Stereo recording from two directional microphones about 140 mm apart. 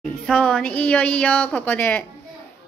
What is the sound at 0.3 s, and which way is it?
A woman's voice, 5° left (ahead or behind).